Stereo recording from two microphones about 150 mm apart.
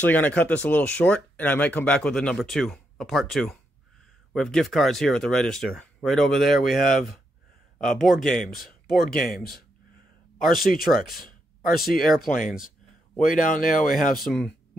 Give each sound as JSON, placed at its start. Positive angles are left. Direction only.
{"t": 0.0, "sound": "speech", "side_deg": 10}
{"t": 6.8, "sound": "speech", "side_deg": 70}
{"t": 8.0, "sound": "speech", "side_deg": 0}
{"t": 8.3, "sound": "speech", "side_deg": 75}
{"t": 10.4, "sound": "speech", "side_deg": 0}
{"t": 10.9, "sound": "speech", "side_deg": 75}
{"t": 14.1, "sound": "speech", "side_deg": 0}